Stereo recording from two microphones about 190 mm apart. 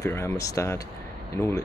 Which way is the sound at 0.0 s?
15° left (ahead or behind).